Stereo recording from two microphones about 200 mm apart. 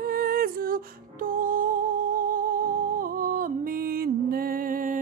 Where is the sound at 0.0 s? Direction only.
45° right (ahead or behind).